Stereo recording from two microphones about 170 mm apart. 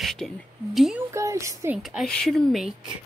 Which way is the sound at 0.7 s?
Centre (ahead or behind).